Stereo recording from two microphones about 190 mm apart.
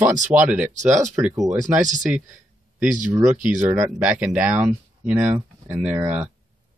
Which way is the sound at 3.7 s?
5° right (ahead or behind).